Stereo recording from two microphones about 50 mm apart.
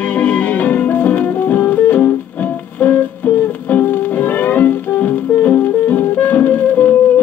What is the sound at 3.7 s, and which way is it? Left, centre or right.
Music, left.